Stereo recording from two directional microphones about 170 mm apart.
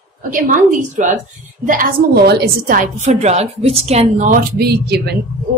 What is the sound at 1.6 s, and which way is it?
A woman's voice, 55° right (ahead or behind).